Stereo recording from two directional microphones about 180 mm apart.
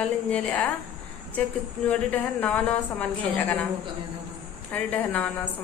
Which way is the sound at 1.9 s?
5° left (ahead or behind).